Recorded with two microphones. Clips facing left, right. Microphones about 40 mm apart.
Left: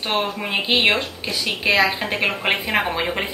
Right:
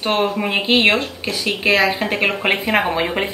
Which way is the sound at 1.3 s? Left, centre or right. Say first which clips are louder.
Right 3 dB; right.